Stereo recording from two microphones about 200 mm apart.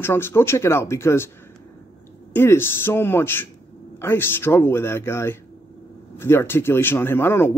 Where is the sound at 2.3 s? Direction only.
10° left (ahead or behind).